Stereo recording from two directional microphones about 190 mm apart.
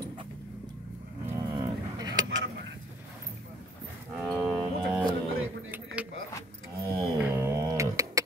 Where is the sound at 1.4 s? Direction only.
20° right (ahead or behind).